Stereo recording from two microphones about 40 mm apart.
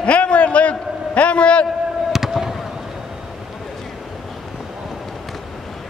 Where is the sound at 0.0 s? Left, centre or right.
Left.